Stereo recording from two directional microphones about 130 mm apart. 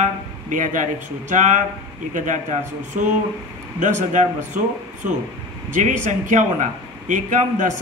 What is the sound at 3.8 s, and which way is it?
A man's voice, 70° right (ahead or behind).